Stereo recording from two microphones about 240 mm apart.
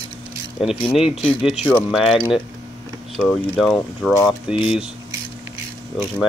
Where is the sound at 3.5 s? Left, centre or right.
Centre.